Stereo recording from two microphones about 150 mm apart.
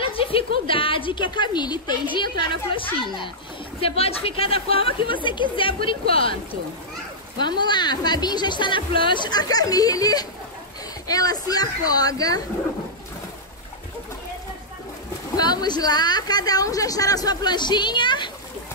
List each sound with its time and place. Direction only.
0.0 s a woman's voice: 40° left (ahead or behind)
15.3 s a woman's voice: 25° left (ahead or behind)